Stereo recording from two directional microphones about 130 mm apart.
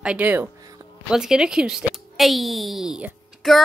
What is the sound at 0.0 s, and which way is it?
Speech, 10° right (ahead or behind).